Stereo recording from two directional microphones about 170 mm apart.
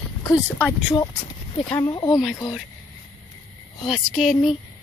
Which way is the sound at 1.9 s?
20° left (ahead or behind).